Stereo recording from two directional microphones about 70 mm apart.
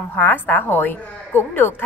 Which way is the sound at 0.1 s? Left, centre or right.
Left.